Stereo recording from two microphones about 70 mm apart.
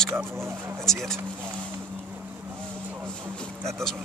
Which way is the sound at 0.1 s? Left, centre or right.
Right.